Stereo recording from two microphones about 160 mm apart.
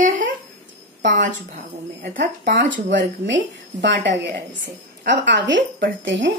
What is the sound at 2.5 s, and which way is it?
Speech, 90° right.